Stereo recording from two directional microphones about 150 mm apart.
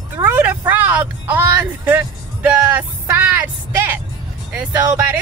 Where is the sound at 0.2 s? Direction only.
10° right (ahead or behind).